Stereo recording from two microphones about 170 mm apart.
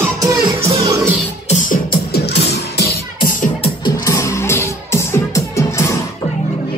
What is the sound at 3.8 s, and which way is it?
Music, 20° left (ahead or behind).